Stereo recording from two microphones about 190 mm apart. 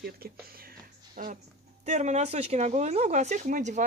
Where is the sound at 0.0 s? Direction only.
50° right (ahead or behind).